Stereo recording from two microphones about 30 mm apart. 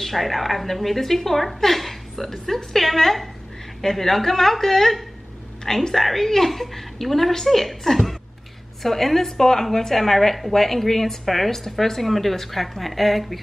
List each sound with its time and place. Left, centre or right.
0.0 s a woman's voice: centre